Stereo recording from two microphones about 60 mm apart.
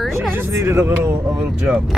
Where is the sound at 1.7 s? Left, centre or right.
Right.